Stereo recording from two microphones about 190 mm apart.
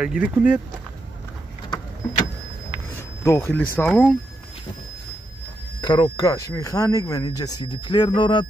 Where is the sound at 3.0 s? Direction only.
15° left (ahead or behind).